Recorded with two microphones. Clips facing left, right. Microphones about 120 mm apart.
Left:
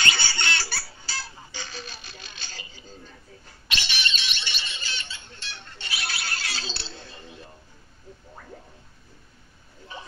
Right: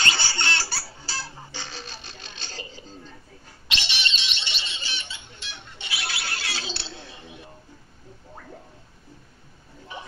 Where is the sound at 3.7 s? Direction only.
25° right (ahead or behind).